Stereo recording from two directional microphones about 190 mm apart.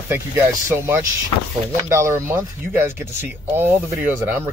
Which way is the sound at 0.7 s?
10° right (ahead or behind).